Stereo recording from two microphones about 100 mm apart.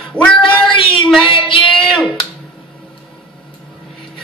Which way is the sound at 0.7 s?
60° left (ahead or behind).